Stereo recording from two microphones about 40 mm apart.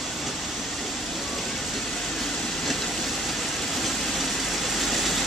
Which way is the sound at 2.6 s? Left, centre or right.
Centre.